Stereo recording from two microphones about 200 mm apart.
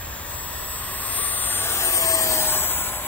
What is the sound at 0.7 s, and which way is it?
Vehicle, 10° left (ahead or behind).